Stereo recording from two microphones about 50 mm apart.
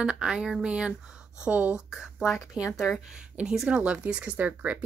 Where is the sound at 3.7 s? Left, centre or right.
Right.